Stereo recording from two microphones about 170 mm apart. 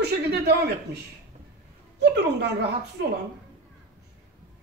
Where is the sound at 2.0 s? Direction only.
75° right (ahead or behind).